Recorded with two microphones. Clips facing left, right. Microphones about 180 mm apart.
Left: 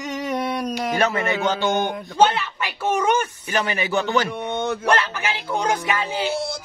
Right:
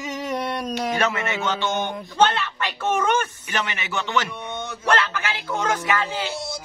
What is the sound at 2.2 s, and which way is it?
Speech, 10° left (ahead or behind).